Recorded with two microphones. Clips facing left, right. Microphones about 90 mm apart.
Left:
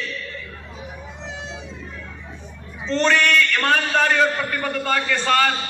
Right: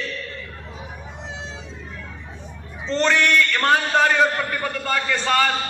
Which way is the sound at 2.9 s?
20° right (ahead or behind).